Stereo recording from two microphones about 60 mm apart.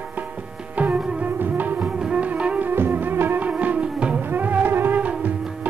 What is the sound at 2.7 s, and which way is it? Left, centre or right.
Music, right.